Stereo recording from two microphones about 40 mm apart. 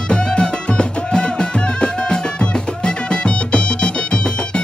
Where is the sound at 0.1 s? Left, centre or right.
Left.